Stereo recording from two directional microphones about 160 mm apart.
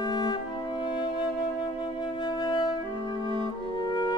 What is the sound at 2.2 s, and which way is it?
Flute, 25° left (ahead or behind).